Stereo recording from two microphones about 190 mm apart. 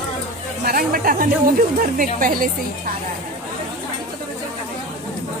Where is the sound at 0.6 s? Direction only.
50° right (ahead or behind).